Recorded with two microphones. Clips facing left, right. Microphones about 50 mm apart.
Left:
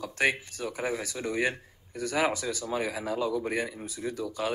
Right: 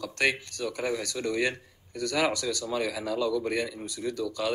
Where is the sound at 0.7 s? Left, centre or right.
Left.